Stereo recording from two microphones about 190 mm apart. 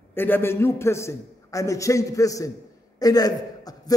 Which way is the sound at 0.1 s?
10° left (ahead or behind).